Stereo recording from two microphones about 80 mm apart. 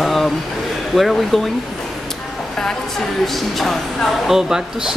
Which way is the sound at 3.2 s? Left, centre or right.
Centre.